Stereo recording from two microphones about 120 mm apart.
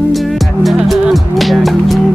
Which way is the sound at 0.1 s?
Centre (ahead or behind).